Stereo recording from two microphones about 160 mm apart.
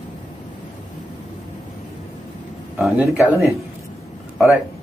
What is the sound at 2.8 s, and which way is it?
Speech, 5° right (ahead or behind).